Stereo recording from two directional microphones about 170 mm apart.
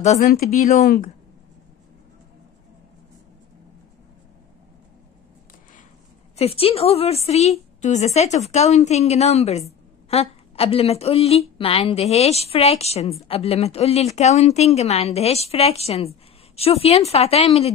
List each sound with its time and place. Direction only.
0.0 s a woman's voice: 40° left (ahead or behind)
0.8 s speech: 60° left (ahead or behind)
6.3 s a woman's voice: 35° left (ahead or behind)